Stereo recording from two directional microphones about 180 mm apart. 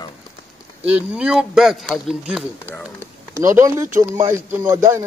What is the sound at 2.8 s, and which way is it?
A man's voice, 15° right (ahead or behind).